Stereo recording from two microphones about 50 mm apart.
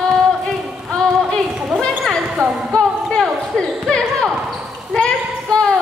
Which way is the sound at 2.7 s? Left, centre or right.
Centre.